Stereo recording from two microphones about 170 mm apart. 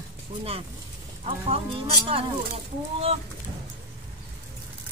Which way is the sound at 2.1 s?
35° right (ahead or behind).